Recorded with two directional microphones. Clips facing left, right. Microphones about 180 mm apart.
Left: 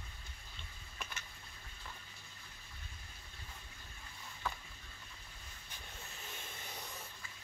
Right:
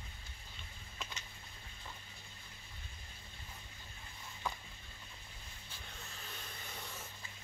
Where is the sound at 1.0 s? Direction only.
20° right (ahead or behind).